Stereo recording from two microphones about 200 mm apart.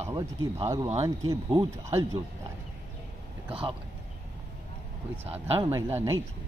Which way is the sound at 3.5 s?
25° right (ahead or behind).